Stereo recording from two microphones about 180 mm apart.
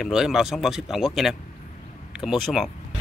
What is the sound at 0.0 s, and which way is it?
Speech, centre (ahead or behind).